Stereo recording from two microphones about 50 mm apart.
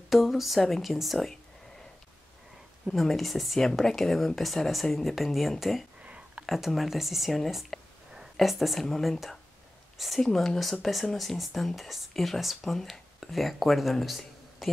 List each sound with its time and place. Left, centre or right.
0.1 s speech: centre
2.9 s speech: centre
6.0 s a sound: right
6.4 s speech: centre